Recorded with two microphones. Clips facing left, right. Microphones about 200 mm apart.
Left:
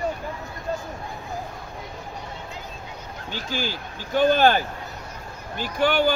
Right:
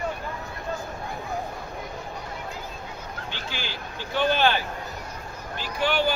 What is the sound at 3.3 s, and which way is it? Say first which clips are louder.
Speech: left 10 dB; 40° left (ahead or behind).